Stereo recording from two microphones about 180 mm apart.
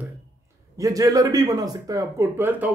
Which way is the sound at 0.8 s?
20° right (ahead or behind).